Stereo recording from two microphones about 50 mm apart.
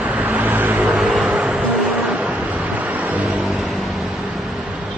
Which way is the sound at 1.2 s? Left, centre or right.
Right.